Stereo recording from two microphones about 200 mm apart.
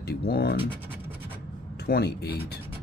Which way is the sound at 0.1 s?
50° left (ahead or behind).